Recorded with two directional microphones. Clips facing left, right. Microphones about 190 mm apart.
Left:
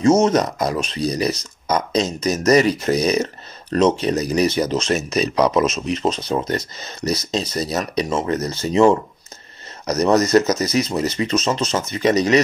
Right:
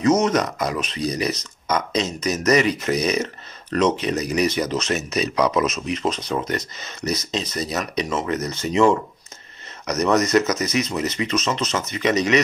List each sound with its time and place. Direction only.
0.0 s speech: 25° left (ahead or behind)
5.9 s speech: 30° left (ahead or behind)